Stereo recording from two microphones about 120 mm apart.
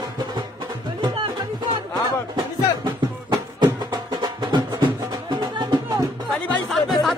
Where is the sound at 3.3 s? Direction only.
35° right (ahead or behind).